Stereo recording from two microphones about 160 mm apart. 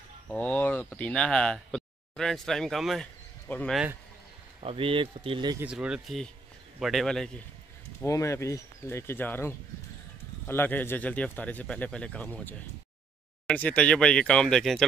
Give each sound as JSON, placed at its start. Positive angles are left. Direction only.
{"t": 0.3, "sound": "speech", "side_deg": 10}
{"t": 4.6, "sound": "speech", "side_deg": -35}
{"t": 5.6, "sound": "speech", "side_deg": -5}
{"t": 8.0, "sound": "speech", "side_deg": 20}